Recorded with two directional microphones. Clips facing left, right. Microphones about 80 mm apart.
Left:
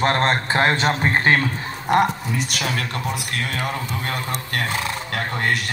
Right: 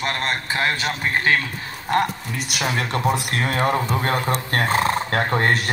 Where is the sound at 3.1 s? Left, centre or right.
Right.